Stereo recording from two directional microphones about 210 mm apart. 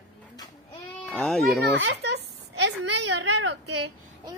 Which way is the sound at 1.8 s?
55° right (ahead or behind).